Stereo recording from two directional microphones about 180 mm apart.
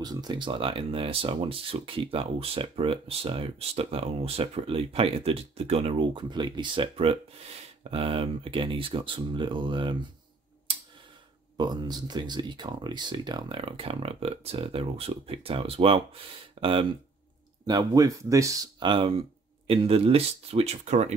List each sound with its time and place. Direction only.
0.0 s speech: 20° right (ahead or behind)
10.7 s a sound: 30° right (ahead or behind)
11.5 s speech: 25° right (ahead or behind); by 21.1 s 40° right (ahead or behind)